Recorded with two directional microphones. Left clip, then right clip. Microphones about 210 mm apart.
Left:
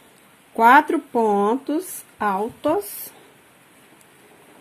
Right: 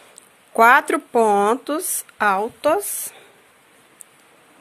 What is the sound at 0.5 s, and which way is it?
Speech, 45° right (ahead or behind).